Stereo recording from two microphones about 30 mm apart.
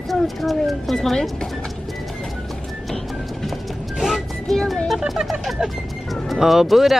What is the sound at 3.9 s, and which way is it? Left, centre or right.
Music, centre.